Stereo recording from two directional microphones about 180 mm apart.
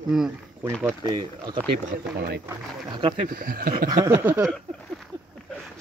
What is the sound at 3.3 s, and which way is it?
Speech, 50° right (ahead or behind).